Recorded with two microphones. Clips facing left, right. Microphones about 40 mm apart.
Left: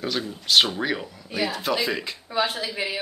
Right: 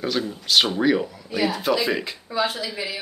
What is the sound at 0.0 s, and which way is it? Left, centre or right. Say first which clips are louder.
Speech: right 3 dB; centre.